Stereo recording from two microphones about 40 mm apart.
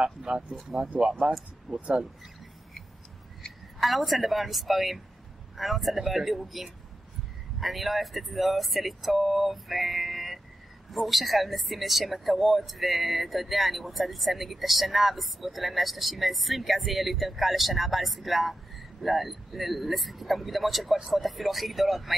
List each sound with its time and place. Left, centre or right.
0.0 s speech: right
3.8 s speech: centre